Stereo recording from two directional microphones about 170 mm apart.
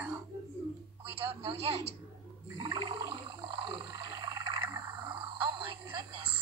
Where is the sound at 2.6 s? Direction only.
25° right (ahead or behind).